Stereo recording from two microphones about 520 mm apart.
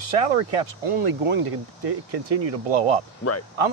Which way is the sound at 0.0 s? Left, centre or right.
Right.